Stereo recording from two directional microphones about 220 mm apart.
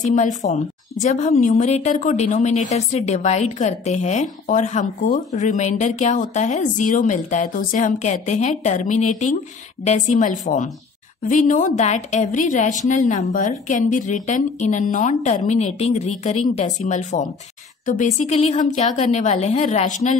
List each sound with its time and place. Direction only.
0.0 s a woman's voice: 35° left (ahead or behind)